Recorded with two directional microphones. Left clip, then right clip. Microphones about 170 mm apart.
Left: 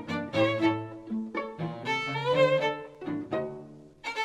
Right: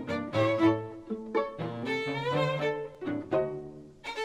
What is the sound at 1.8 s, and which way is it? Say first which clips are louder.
Music: left 2 dB; 30° left (ahead or behind).